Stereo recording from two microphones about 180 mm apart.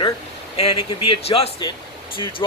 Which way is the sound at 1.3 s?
30° left (ahead or behind).